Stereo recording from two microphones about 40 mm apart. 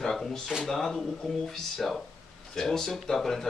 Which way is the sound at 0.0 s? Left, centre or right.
Centre.